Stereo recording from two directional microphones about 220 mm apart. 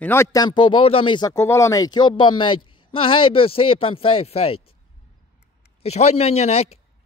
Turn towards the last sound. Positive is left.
turn(degrees=30)  # may be behind; listen again after turning